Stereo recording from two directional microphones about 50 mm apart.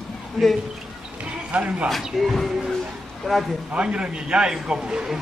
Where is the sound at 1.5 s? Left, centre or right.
Right.